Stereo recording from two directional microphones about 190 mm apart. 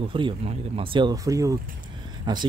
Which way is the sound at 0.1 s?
25° right (ahead or behind).